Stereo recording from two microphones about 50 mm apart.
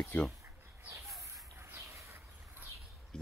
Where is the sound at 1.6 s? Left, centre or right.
Right.